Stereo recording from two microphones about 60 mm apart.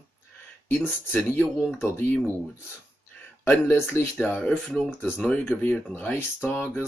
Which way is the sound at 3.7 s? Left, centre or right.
Left.